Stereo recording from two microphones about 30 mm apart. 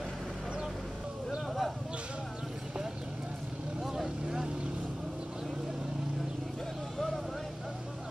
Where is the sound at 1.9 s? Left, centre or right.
Right.